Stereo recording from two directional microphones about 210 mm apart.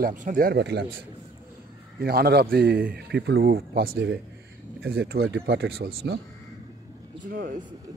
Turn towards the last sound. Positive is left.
turn(degrees=-45)  # may be behind; listen again after turning